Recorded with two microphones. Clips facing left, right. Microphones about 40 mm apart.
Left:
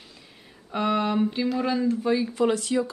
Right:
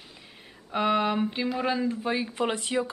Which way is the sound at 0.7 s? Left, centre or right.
Centre.